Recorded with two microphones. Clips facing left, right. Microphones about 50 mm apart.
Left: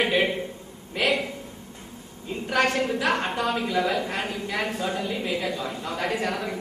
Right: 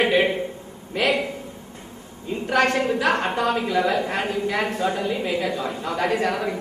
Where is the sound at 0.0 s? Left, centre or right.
Centre.